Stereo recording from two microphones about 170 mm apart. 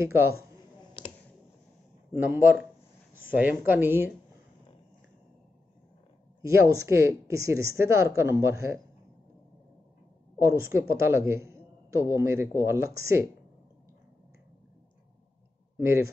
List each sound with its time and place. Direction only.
2.1 s a man's voice: 10° right (ahead or behind)
6.4 s a man's voice: 15° right (ahead or behind)
10.4 s a man's voice: 15° right (ahead or behind)
15.8 s a man's voice: 15° right (ahead or behind)